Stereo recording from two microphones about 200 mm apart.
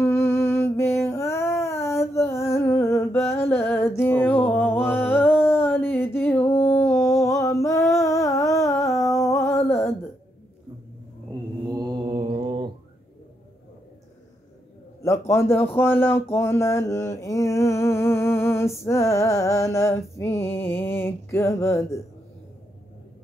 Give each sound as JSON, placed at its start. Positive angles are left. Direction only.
{"t": 0.0, "sound": "a sound", "side_deg": 10}
{"t": 7.2, "sound": "humming", "side_deg": 15}
{"t": 11.7, "sound": "mantra", "side_deg": -20}
{"t": 15.0, "sound": "speech", "side_deg": 15}